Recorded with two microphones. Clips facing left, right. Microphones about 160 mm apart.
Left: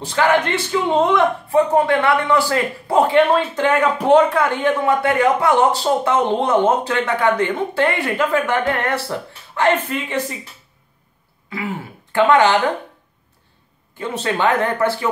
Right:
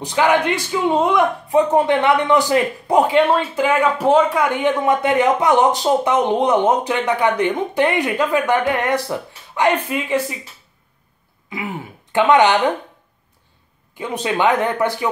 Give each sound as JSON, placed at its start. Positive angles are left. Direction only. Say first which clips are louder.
{"t": 0.0, "sound": "speech", "louder": "even", "side_deg": -15}
{"t": 11.5, "sound": "speech", "louder": "left 1 dB", "side_deg": -20}
{"t": 13.9, "sound": "speech", "louder": "right 1 dB", "side_deg": -15}